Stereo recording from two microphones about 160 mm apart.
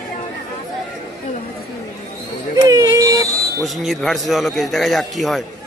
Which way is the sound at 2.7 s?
20° right (ahead or behind).